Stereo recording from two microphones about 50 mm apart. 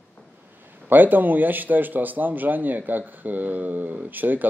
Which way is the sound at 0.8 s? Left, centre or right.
Right.